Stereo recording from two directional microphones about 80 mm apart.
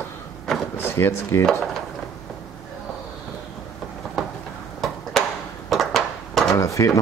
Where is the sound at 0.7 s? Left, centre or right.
Left.